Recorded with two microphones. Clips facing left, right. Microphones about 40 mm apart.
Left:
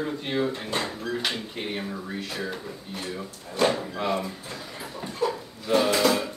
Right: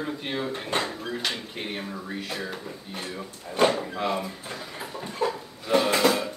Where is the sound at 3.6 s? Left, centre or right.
Right.